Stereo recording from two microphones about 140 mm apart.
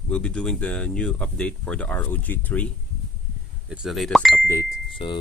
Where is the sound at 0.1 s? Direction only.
5° left (ahead or behind).